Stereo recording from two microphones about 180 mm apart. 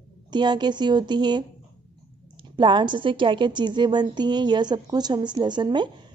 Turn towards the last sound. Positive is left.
turn(degrees=-25)  # may be behind; listen again after turning